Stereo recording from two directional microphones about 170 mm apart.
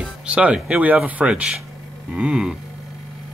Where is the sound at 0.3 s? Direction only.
5° right (ahead or behind).